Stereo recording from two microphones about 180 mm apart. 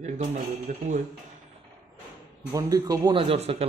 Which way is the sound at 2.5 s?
20° right (ahead or behind).